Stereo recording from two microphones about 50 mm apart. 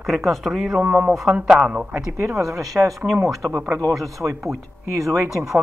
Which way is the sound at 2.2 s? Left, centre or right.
Right.